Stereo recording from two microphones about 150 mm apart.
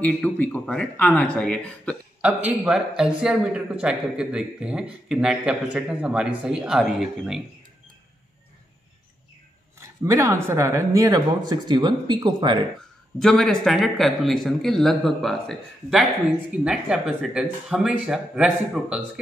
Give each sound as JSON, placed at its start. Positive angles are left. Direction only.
{"t": 0.0, "sound": "speech", "side_deg": 10}
{"t": 2.2, "sound": "speech", "side_deg": -5}
{"t": 9.8, "sound": "speech", "side_deg": -20}
{"t": 13.2, "sound": "speech", "side_deg": 0}